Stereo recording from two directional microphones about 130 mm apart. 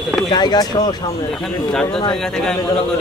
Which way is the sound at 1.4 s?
5° left (ahead or behind).